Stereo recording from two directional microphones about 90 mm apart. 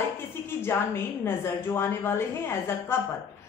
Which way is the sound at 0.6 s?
25° left (ahead or behind).